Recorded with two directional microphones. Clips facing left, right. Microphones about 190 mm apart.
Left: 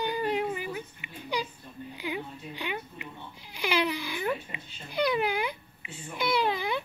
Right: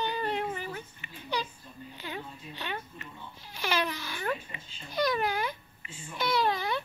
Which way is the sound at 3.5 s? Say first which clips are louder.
Left 3 dB; 15° left (ahead or behind).